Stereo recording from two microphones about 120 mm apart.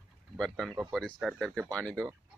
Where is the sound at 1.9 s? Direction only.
25° right (ahead or behind).